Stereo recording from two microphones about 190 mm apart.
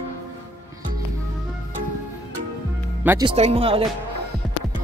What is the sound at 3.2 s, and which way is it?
Speech, 30° right (ahead or behind).